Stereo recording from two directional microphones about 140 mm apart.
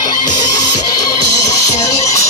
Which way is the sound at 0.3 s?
30° left (ahead or behind).